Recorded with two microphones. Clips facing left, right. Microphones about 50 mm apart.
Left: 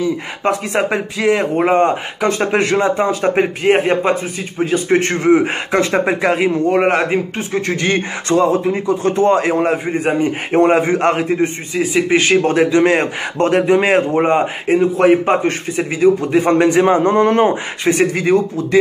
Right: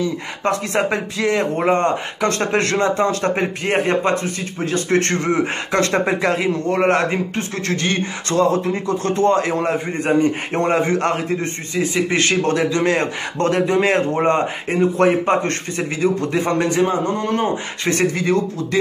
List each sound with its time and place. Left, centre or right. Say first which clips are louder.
0.0 s speech: left 3 dB; centre
16.5 s a man's voice: left 6 dB; left
18.1 s speech: left 4 dB; left